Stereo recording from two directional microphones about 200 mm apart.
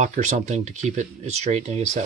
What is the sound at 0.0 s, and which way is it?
Speech, 35° right (ahead or behind).